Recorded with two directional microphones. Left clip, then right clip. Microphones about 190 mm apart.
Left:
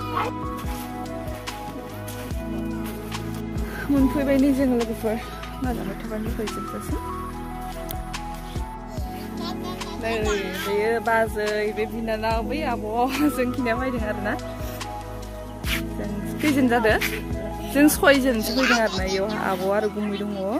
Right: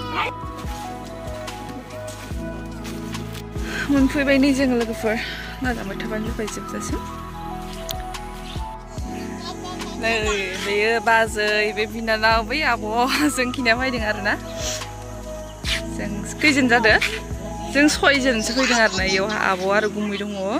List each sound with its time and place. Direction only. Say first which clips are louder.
3.8 s speech: right 3 dB; centre (ahead or behind)
10.0 s speech: right 4 dB; centre (ahead or behind)
16.0 s speech: right 5 dB; 5° left (ahead or behind)